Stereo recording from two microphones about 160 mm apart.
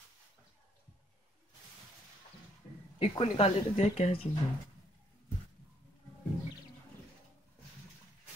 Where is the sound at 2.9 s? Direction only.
35° left (ahead or behind).